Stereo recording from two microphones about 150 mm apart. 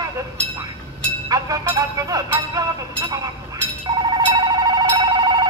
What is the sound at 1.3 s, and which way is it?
Vehicle, 25° right (ahead or behind).